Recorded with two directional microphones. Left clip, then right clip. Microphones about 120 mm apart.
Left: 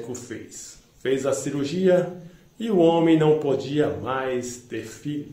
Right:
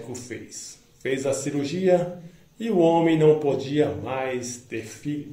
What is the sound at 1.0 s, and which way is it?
Speech, 25° left (ahead or behind).